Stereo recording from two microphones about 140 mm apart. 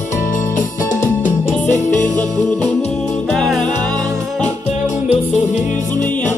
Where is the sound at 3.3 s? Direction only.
5° left (ahead or behind).